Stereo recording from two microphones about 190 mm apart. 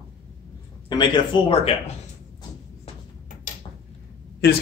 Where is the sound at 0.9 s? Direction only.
25° left (ahead or behind).